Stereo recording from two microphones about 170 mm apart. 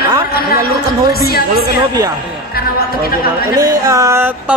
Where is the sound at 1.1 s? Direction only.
65° left (ahead or behind).